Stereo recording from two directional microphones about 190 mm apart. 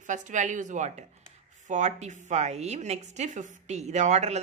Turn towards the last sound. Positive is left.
turn(degrees=-35)  # may be behind; listen again after turning